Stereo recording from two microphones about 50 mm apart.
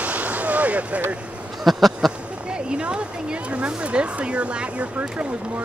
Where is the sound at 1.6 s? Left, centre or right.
Centre.